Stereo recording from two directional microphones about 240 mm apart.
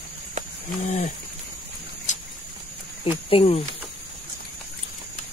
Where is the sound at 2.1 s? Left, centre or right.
Left.